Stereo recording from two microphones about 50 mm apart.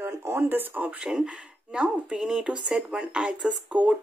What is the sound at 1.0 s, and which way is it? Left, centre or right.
Speech, centre.